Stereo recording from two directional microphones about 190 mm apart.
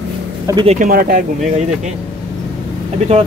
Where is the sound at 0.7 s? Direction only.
45° right (ahead or behind).